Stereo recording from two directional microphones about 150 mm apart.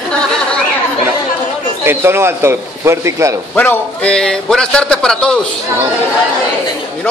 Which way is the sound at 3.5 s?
10° left (ahead or behind).